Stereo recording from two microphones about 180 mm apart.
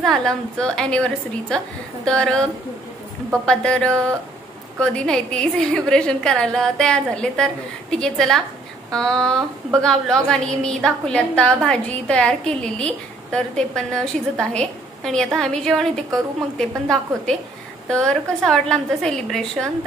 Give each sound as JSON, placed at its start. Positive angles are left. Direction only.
{"t": 0.0, "sound": "a woman's voice", "side_deg": 5}
{"t": 3.4, "sound": "a woman's voice", "side_deg": 5}